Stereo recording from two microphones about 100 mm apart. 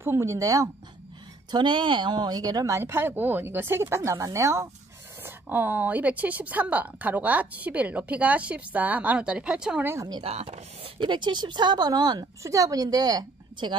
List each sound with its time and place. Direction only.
0.0 s a woman's voice: 25° right (ahead or behind)
1.5 s speech: 55° right (ahead or behind); by 4.6 s 30° right (ahead or behind)
5.2 s a woman's voice: 20° right (ahead or behind)
10.2 s speech: 85° right
11.0 s speech: 50° right (ahead or behind)